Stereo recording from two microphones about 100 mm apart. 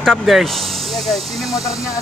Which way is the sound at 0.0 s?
Centre (ahead or behind).